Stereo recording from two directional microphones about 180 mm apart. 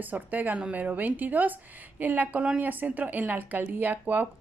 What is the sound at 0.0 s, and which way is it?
Speech, 10° right (ahead or behind).